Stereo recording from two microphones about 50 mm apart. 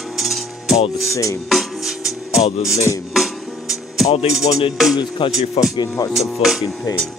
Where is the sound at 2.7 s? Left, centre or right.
Left.